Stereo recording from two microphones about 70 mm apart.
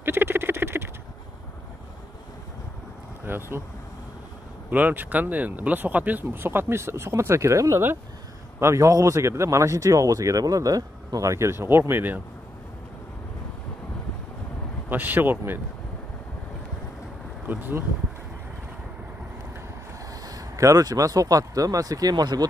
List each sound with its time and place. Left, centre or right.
0.0 s patter: right
3.3 s speech: right
4.6 s speech: right
14.9 s speech: right
17.5 s speech: right
20.2 s speech: right